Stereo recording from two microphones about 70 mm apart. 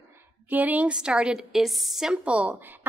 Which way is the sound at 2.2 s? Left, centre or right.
Centre.